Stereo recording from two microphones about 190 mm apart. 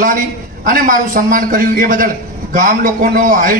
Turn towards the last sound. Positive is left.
turn(degrees=-45)  # may be behind; listen again after turning